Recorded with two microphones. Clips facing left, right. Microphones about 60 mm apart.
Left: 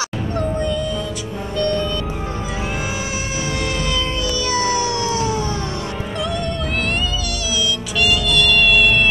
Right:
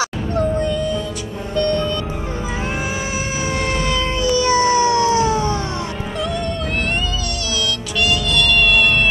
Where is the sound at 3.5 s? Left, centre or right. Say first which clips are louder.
Right 3 dB; right.